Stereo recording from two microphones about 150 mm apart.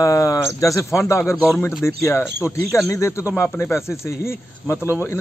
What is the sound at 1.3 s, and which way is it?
Speech, centre (ahead or behind).